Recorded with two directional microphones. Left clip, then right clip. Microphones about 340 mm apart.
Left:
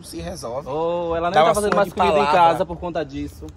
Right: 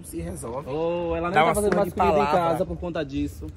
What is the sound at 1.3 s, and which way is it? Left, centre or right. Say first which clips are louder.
Speech: left 5 dB; left.